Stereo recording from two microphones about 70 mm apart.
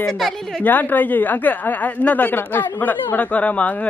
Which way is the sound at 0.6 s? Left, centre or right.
Left.